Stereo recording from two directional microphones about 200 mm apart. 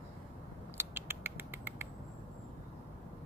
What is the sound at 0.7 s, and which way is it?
Patter, 10° right (ahead or behind).